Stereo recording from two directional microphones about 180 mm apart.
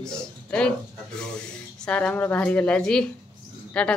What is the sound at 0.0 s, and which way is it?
A woman's voice, 5° left (ahead or behind).